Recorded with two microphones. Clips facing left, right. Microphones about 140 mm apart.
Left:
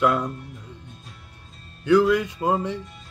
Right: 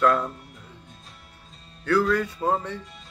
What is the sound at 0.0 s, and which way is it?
Speech, 15° left (ahead or behind).